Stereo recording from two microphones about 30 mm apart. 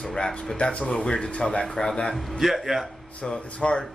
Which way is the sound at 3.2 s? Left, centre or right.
Left.